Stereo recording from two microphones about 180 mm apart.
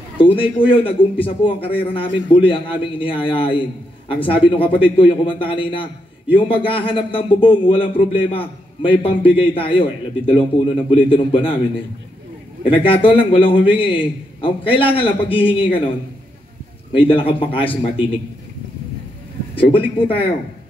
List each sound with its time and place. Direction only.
0.2 s a man's voice: 30° left (ahead or behind)
12.6 s a man's voice: 30° left (ahead or behind)
17.1 s a man's voice: 30° left (ahead or behind)
19.5 s a man's voice: 30° left (ahead or behind)